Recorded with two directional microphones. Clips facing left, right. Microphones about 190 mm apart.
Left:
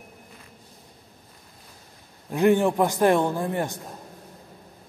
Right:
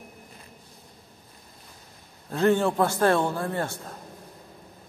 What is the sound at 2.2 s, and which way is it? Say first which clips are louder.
A man's voice: left 2 dB; 15° left (ahead or behind).